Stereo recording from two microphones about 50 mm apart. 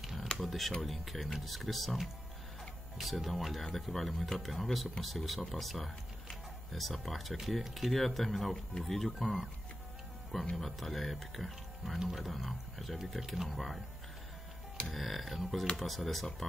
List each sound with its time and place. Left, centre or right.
0.0 s a sound: centre
0.4 s speech: centre
10.5 s speech: centre
14.9 s speech: centre